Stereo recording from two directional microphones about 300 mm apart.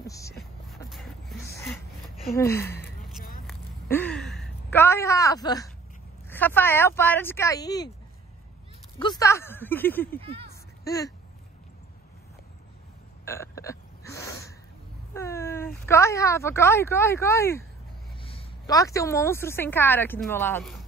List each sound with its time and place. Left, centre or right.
0.0 s a sound: centre
0.4 s music: centre
1.5 s a sound: centre
2.3 s speech: centre
3.4 s a sound: centre
6.2 s speech: centre
9.0 s speech: centre
10.2 s speech: centre
10.9 s speech: centre
13.2 s burping: centre
15.1 s a woman's voice: centre